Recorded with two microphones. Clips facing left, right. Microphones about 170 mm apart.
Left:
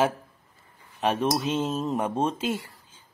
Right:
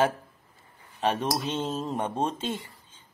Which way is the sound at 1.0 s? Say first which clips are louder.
Left 2 dB; centre (ahead or behind).